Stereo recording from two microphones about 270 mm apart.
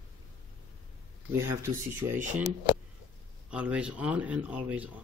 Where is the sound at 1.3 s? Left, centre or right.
Centre.